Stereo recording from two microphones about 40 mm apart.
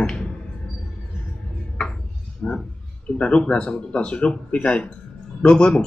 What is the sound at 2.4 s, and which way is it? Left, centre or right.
A man's voice, left.